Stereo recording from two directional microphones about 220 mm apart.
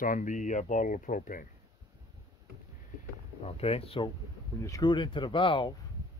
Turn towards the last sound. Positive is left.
turn(degrees=20)  # may be behind; listen again after turning